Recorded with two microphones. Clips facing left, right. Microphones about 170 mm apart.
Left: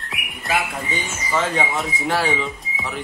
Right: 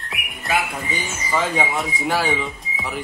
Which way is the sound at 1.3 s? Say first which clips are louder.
Even; 5° right (ahead or behind).